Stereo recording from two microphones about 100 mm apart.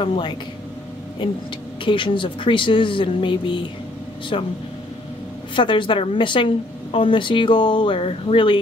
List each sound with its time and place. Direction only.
0.0 s a woman's voice: 65° left (ahead or behind)
5.6 s a woman's voice: 55° left (ahead or behind)